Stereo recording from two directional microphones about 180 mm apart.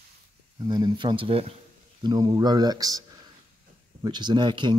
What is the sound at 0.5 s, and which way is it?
Speech, 20° right (ahead or behind).